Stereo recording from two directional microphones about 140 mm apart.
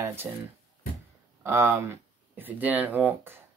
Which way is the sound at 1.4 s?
20° right (ahead or behind).